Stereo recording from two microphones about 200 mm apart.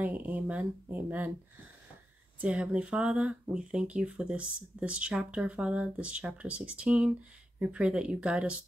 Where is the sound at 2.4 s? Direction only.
5° right (ahead or behind).